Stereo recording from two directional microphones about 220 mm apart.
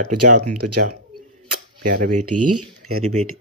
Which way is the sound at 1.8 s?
40° right (ahead or behind).